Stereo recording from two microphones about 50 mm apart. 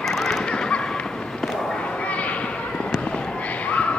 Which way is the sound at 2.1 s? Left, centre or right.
Left.